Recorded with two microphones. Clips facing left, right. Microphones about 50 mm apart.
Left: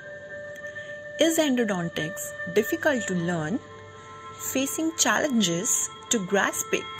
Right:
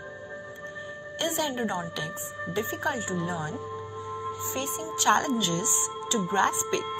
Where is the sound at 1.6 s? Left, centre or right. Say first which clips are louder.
Left 4 dB; left.